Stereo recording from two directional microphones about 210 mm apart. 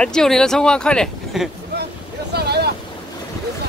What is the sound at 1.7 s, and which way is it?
Boat, 55° right (ahead or behind).